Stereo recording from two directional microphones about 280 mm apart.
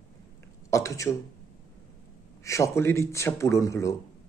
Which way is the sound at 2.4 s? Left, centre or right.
Centre.